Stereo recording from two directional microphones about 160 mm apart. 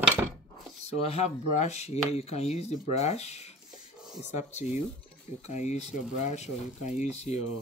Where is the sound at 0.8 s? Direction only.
40° left (ahead or behind).